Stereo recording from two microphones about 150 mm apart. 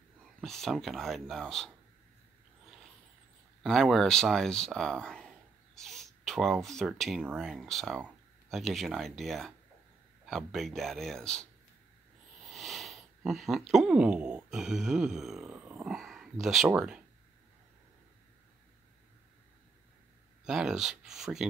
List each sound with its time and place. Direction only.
0.2 s speech: centre (ahead or behind)
3.6 s speech: centre (ahead or behind)
20.4 s speech: 5° right (ahead or behind)